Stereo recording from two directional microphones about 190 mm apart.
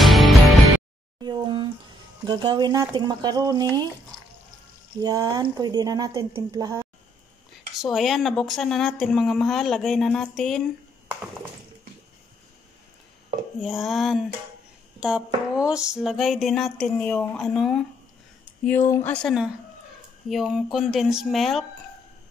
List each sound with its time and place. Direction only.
0.0 s music: centre (ahead or behind)
1.2 s a sound: 25° right (ahead or behind)
2.2 s speech: 20° right (ahead or behind)
5.0 s speech: 20° right (ahead or behind)
7.8 s a woman's voice: centre (ahead or behind)
13.6 s a woman's voice: centre (ahead or behind)